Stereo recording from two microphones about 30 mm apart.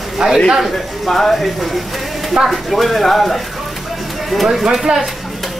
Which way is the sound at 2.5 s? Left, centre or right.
Centre.